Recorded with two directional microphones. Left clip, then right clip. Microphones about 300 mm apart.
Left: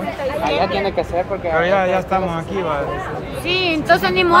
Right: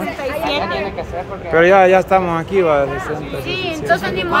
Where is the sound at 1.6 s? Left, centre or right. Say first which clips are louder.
Right 10 dB; centre.